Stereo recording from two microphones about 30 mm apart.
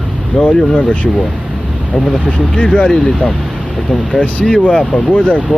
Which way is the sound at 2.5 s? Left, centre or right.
Left.